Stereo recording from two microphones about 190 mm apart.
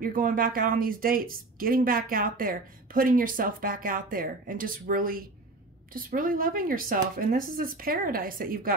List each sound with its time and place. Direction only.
0.0 s speech: 45° right (ahead or behind)